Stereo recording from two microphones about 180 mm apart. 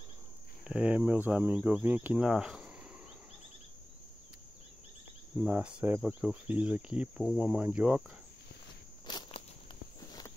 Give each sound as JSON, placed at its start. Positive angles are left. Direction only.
{"t": 0.7, "sound": "speech", "side_deg": -5}
{"t": 5.4, "sound": "speech", "side_deg": -10}
{"t": 9.0, "sound": "walk", "side_deg": 25}